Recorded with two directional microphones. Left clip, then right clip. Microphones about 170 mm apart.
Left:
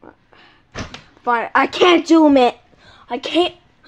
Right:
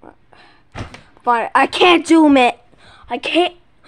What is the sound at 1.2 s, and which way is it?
Speech, 15° right (ahead or behind).